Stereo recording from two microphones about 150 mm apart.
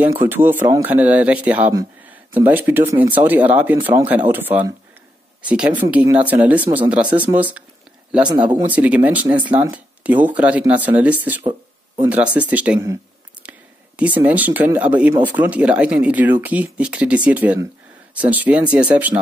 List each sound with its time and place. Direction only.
0.0 s speech: 15° right (ahead or behind)
8.3 s speech: 30° right (ahead or behind)
8.6 s speech: 10° right (ahead or behind)